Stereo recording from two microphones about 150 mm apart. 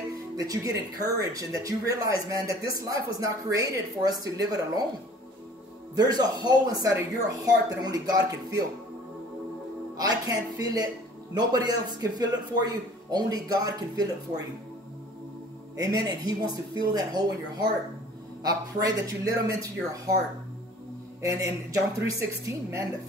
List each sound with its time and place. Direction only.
0.4 s a man's voice: 25° right (ahead or behind)
5.9 s a man's voice: 25° right (ahead or behind)
9.9 s a man's voice: 25° right (ahead or behind)
15.8 s a man's voice: 25° right (ahead or behind)
21.2 s a man's voice: 20° right (ahead or behind)